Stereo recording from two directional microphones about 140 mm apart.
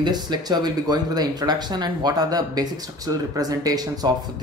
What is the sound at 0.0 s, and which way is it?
Speech, 30° right (ahead or behind).